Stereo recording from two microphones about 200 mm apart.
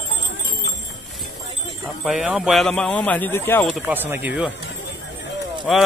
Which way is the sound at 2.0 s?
5° right (ahead or behind).